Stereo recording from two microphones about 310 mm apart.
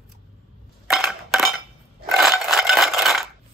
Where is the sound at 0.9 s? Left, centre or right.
Centre.